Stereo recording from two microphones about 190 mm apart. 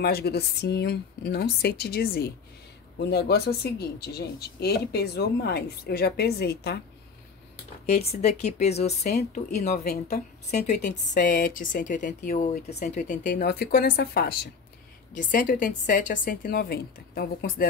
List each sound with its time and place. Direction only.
0.0 s speech: 55° left (ahead or behind)
8.1 s speech: 35° left (ahead or behind)
9.8 s a woman's voice: 55° left (ahead or behind)
15.1 s a woman's voice: 45° left (ahead or behind)